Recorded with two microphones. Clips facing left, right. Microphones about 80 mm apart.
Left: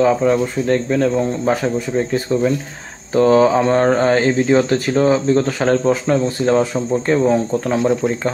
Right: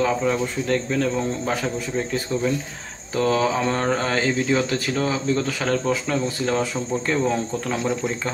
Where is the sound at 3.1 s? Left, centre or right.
Left.